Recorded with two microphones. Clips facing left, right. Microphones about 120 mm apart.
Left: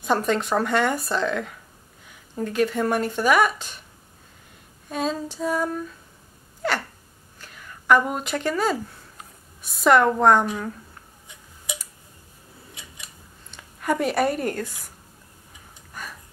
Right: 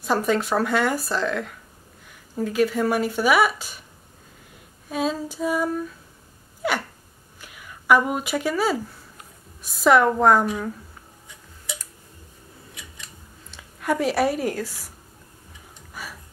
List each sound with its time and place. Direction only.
0.0 s a woman's voice: 5° right (ahead or behind)
4.8 s a woman's voice: 5° right (ahead or behind)
6.6 s a sound: 5° right (ahead or behind)
7.3 s a woman's voice: 10° right (ahead or behind)
11.2 s tick: 15° left (ahead or behind)
12.8 s scissors: 25° left (ahead or behind)
13.5 s speech: centre (ahead or behind)
15.9 s a sound: 5° right (ahead or behind)